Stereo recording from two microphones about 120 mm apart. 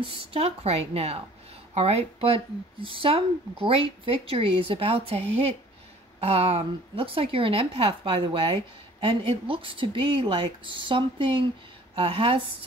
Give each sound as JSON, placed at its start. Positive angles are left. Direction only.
{"t": 0.0, "sound": "a woman's voice", "side_deg": -50}